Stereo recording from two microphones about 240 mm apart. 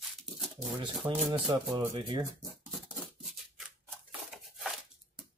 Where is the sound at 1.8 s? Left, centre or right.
Centre.